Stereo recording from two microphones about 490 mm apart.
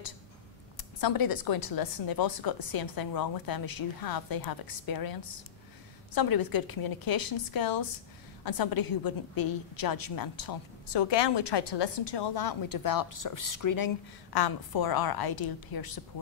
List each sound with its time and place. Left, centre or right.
0.7 s a woman's voice: left